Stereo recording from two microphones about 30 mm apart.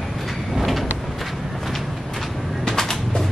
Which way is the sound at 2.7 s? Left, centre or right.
Centre.